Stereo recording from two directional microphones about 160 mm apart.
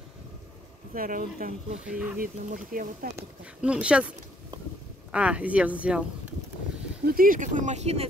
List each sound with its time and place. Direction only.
0.9 s speech: 60° right (ahead or behind)
1.9 s speech: 5° right (ahead or behind)
2.1 s speech: 60° right (ahead or behind)
3.2 s speech: 5° right (ahead or behind)
5.1 s speech: 5° right (ahead or behind)
7.1 s speech: 65° right (ahead or behind); by 8.1 s 40° right (ahead or behind)